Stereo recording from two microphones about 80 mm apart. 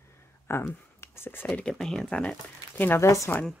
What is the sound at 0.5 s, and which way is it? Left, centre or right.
Speech, left.